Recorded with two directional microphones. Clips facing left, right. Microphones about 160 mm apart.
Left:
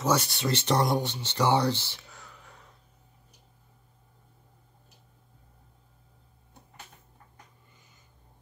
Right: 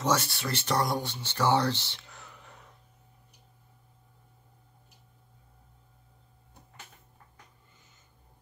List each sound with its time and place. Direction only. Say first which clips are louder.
0.0 s speech: left 2 dB; 15° left (ahead or behind)
2.1 s whispering: even; centre (ahead or behind)